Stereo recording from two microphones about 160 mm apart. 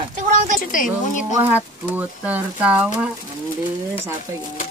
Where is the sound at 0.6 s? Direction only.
60° left (ahead or behind).